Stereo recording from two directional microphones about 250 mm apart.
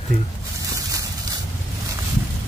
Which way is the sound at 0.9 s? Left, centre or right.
Centre.